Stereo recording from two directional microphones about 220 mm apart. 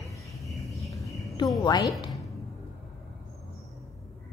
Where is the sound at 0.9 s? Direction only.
15° left (ahead or behind).